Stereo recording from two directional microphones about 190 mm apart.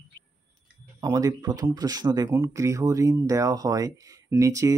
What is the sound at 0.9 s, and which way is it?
Speech, 20° right (ahead or behind).